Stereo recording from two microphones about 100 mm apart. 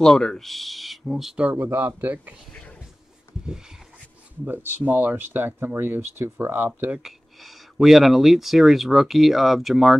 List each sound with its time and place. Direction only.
0.0 s speech: 5° left (ahead or behind)
1.5 s speech: 20° right (ahead or behind)
4.5 s speech: 15° right (ahead or behind)
7.0 s speech: 5° right (ahead or behind)